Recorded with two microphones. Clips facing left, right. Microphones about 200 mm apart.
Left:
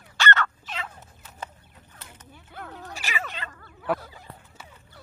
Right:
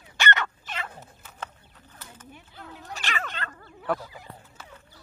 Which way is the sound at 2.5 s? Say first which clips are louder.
Left 6 dB; 55° left (ahead or behind).